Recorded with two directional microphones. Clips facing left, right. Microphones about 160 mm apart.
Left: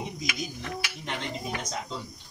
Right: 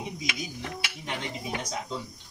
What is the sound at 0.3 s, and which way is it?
Stir, 25° right (ahead or behind).